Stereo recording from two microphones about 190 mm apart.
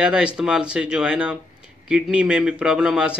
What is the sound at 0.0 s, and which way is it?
A man's voice, 5° right (ahead or behind).